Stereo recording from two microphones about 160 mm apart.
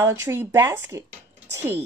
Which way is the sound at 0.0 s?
15° right (ahead or behind).